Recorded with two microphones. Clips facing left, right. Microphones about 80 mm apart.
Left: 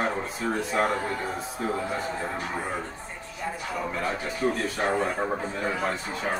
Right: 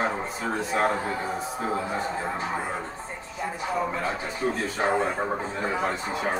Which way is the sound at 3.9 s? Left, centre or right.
Centre.